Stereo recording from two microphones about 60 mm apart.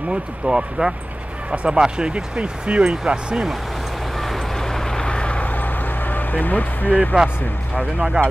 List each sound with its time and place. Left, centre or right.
0.1 s speech: centre
4.2 s vehicle: centre; by 7.0 s left
7.7 s speech: centre